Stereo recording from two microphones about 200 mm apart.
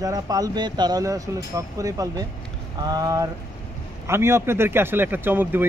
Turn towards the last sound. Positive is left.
turn(degrees=-10)  # may be behind; listen again after turning